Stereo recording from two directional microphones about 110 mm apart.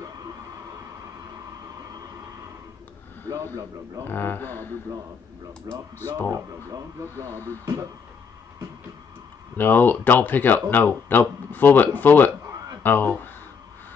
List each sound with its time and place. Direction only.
4.1 s a man's voice: 20° left (ahead or behind)
5.9 s a man's voice: 20° left (ahead or behind)
6.3 s speech: 25° right (ahead or behind)
9.6 s a man's voice: 20° left (ahead or behind)